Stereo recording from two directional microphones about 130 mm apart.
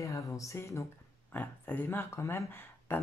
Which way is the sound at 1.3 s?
15° left (ahead or behind).